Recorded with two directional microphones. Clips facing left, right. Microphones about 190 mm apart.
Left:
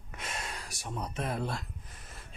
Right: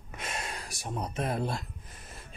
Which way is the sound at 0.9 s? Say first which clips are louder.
Right 3 dB; 35° right (ahead or behind).